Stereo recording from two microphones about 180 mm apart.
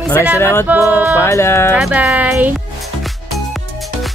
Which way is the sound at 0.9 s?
10° right (ahead or behind).